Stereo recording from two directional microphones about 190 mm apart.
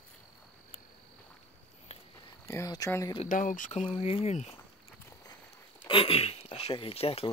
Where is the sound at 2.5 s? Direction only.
15° left (ahead or behind).